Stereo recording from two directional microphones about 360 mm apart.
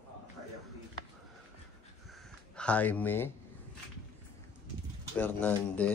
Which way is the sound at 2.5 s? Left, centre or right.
Centre.